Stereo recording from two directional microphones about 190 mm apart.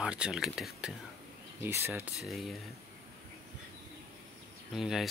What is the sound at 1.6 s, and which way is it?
Speech, 15° right (ahead or behind).